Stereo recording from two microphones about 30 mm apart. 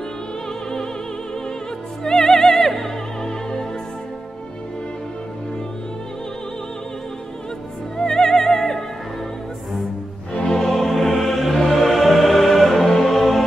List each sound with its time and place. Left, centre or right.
2.0 s music: centre
8.0 s music: centre
10.4 s music: centre
10.7 s music: centre